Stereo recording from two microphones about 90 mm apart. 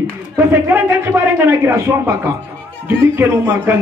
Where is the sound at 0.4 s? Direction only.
25° right (ahead or behind).